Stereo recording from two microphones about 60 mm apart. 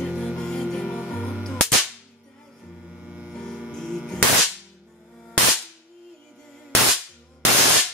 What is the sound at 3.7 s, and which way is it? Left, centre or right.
Music, centre.